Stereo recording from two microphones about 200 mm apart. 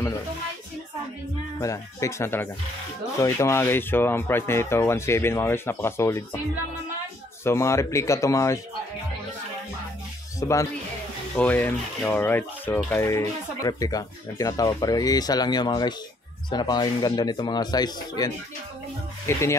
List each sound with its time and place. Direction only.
1.6 s speech: 15° left (ahead or behind)
7.4 s speech: 15° left (ahead or behind)
10.4 s speech: 15° left (ahead or behind)